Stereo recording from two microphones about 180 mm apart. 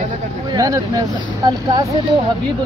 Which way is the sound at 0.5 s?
20° right (ahead or behind).